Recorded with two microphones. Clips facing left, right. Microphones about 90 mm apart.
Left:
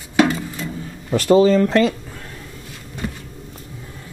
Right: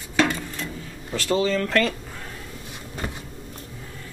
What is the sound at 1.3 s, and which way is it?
Speech, 20° left (ahead or behind).